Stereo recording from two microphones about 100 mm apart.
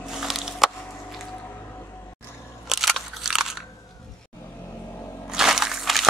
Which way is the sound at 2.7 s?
Centre (ahead or behind).